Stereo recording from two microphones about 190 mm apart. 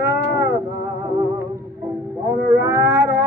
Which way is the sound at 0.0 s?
15° right (ahead or behind).